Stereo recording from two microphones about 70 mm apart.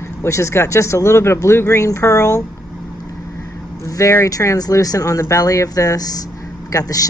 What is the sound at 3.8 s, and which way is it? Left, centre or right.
Vehicle, left.